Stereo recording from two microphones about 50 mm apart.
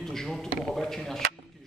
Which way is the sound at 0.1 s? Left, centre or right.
Centre.